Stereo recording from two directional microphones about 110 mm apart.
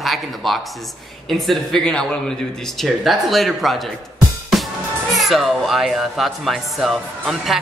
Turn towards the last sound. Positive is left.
turn(degrees=0)  # may be behind; listen again after turning